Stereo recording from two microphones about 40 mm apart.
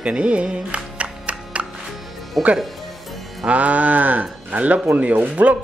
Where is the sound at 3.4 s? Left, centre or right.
Right.